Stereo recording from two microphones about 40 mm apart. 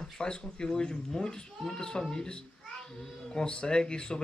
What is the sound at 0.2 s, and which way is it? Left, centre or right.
Speech, centre.